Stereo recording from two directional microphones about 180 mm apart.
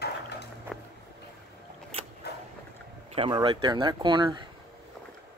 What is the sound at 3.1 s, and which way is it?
Speech, 30° right (ahead or behind).